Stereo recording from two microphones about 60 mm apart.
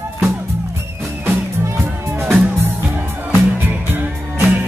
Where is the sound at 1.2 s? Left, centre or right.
Right.